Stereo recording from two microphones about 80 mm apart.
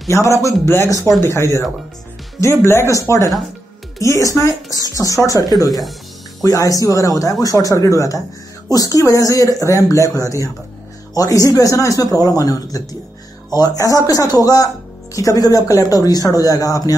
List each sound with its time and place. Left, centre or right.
0.1 s speech: left